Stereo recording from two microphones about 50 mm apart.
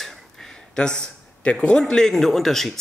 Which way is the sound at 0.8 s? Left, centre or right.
Centre.